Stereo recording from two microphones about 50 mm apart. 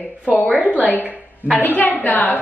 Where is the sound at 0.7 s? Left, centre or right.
Left.